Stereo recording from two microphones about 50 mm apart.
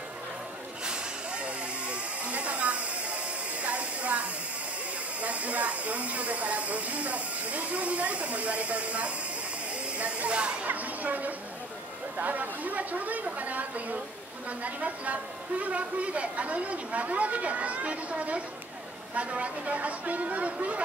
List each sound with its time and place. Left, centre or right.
0.8 s vehicle: right
5.2 s speech: right
10.7 s a woman's voice: right